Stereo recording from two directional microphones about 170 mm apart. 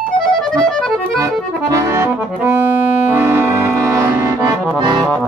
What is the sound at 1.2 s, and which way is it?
Accordion, 20° right (ahead or behind).